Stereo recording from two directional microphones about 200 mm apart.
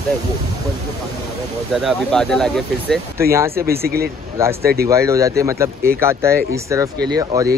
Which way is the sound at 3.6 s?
50° right (ahead or behind).